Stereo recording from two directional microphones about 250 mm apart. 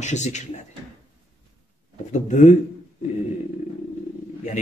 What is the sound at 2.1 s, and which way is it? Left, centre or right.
Speech, left.